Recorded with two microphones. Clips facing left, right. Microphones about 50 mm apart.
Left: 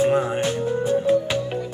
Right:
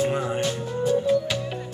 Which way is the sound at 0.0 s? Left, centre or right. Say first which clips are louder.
Left 4 dB; left.